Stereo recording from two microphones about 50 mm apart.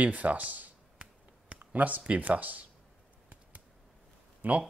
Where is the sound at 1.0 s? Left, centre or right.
Right.